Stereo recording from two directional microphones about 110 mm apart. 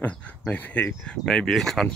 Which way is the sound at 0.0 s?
10° left (ahead or behind).